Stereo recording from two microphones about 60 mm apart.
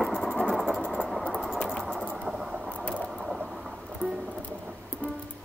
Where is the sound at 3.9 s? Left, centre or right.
Centre.